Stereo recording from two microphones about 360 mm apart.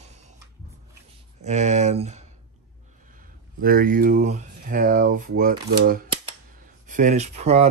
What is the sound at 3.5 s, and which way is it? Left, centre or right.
Speech, right.